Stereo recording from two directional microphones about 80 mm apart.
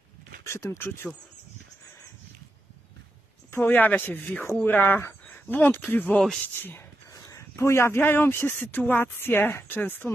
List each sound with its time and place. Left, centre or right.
0.5 s speech: left
3.5 s speech: left
7.1 s speech: left